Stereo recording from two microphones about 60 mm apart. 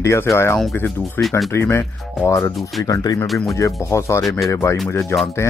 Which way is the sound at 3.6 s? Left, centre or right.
Left.